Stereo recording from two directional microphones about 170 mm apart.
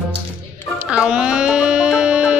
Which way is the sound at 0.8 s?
5° right (ahead or behind).